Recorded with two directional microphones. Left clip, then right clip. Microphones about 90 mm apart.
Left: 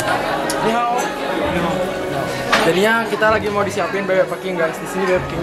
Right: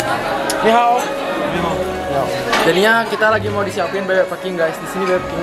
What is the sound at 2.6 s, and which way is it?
Speech, 20° right (ahead or behind).